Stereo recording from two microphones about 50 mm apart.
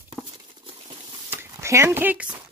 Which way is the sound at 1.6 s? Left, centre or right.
Right.